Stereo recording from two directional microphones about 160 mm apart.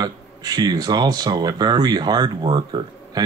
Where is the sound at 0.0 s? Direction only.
25° right (ahead or behind).